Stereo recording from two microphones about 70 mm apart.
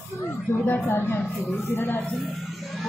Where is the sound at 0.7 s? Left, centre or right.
Left.